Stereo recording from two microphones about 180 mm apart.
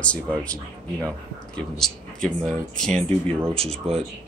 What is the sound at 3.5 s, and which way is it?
Speech, 35° right (ahead or behind).